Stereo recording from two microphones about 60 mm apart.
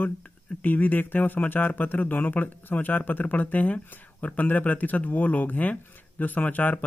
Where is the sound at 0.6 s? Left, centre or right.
Left.